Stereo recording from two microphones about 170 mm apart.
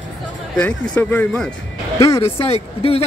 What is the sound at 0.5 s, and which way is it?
Speech, 5° left (ahead or behind).